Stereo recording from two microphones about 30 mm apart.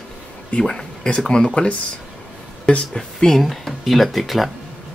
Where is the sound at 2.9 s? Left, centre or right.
Left.